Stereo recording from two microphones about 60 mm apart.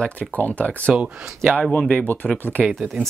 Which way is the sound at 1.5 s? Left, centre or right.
Centre.